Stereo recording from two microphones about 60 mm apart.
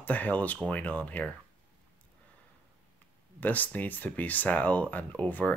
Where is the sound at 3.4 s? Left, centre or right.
Left.